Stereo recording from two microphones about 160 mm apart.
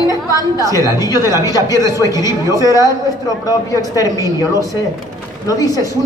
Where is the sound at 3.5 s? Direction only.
20° left (ahead or behind).